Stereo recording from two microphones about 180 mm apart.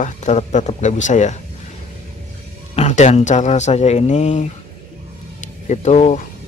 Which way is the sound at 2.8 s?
40° left (ahead or behind).